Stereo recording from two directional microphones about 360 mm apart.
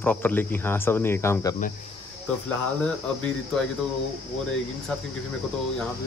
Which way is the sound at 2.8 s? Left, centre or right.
Centre.